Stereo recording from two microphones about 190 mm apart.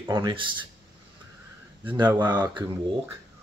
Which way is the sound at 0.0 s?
25° right (ahead or behind).